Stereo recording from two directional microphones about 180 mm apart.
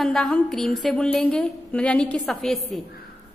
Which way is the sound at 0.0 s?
Centre (ahead or behind).